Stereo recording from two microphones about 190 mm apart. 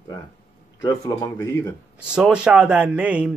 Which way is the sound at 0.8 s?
20° left (ahead or behind).